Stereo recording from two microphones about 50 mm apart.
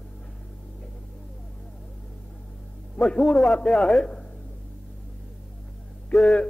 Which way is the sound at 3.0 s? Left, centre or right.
Left.